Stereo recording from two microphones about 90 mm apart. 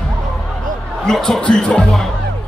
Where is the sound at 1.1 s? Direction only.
5° left (ahead or behind).